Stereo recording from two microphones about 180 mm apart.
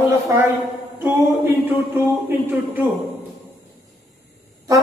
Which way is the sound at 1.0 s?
10° right (ahead or behind).